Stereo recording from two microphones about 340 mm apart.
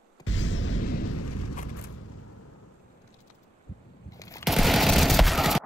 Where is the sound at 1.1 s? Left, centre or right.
Left.